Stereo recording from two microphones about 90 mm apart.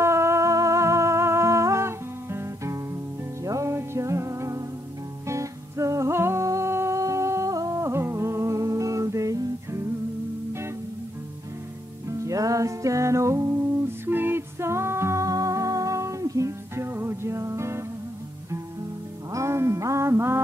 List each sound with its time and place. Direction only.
0.0 s music: 30° right (ahead or behind)
12.1 s music: 40° right (ahead or behind)
14.0 s music: 25° right (ahead or behind)
19.3 s music: 30° right (ahead or behind)